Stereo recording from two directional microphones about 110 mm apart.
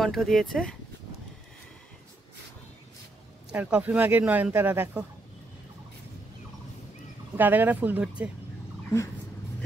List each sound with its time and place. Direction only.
0.0 s speech: centre (ahead or behind)
3.4 s speech: 15° right (ahead or behind)
7.3 s speech: 15° right (ahead or behind)